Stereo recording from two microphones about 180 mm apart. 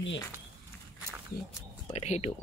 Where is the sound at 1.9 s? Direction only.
35° left (ahead or behind).